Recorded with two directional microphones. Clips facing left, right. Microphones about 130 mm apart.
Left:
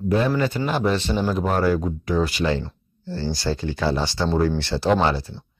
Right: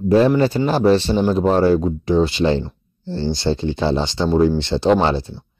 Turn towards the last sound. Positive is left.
turn(degrees=-25)  # may be behind; listen again after turning